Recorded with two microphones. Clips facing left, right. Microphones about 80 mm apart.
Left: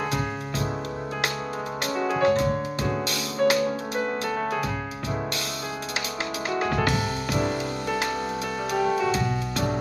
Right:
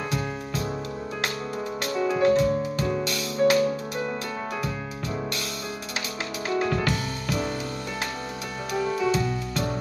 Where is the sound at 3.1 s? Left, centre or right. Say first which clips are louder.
Right 1 dB; left.